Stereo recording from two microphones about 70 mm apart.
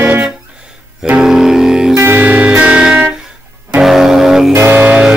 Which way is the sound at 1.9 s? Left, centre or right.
Right.